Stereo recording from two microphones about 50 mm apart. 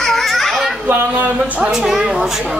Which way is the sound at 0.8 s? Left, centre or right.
Right.